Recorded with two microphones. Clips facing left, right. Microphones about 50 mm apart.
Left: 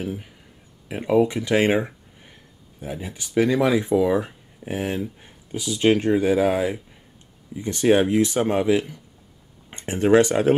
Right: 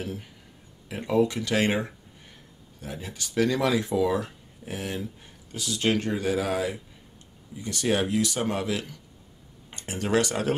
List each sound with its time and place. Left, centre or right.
0.0 s speech: centre